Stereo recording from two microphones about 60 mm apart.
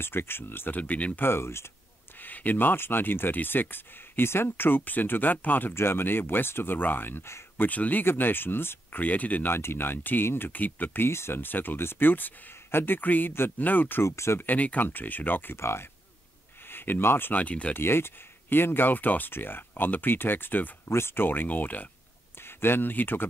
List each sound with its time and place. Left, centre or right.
0.0 s speech: left
1.2 s speech: left
2.1 s speech: left
5.8 s speech: left
9.0 s speech: left
9.5 s speech: left
11.1 s speech: left
14.0 s speech: left
14.4 s speech: left
15.5 s speech: left
16.6 s speech: left
17.4 s speech: left
17.7 s speech: left
22.4 s speech: left